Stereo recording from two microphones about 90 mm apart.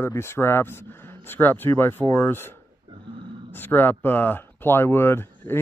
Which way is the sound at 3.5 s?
25° left (ahead or behind).